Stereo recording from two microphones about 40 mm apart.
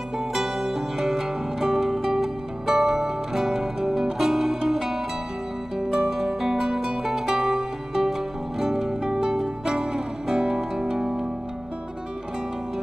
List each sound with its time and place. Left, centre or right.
0.3 s music: centre